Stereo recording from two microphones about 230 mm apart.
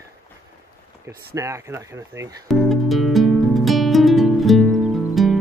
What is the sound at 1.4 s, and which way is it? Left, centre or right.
Speech, centre.